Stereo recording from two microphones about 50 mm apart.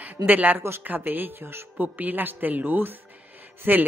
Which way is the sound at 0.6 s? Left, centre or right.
Right.